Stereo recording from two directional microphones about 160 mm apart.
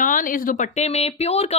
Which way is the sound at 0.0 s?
55° left (ahead or behind).